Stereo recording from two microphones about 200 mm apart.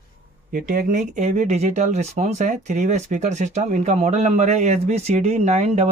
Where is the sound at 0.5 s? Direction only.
45° right (ahead or behind).